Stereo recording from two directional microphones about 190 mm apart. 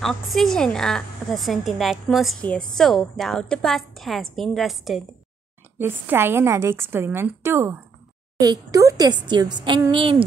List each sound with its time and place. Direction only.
0.0 s a woman's voice: centre (ahead or behind)
5.8 s a woman's voice: 10° right (ahead or behind); by 10.2 s 25° right (ahead or behind)